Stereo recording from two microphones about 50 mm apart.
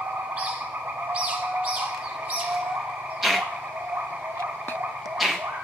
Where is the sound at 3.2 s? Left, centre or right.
Centre.